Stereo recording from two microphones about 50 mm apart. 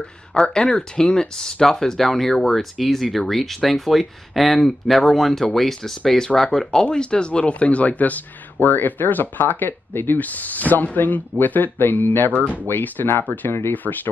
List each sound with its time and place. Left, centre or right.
0.3 s speech: centre; by 13.9 s left